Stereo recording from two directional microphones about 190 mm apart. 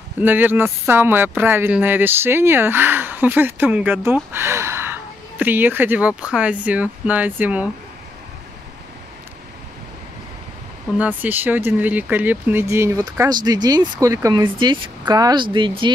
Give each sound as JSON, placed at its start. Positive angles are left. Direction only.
{"t": 0.2, "sound": "speech", "side_deg": -10}
{"t": 11.0, "sound": "speech", "side_deg": -10}